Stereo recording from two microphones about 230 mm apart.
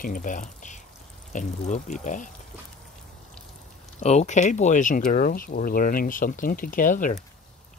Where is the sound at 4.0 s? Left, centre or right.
Left.